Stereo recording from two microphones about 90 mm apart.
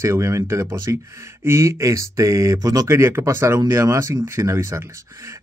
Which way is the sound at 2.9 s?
30° right (ahead or behind).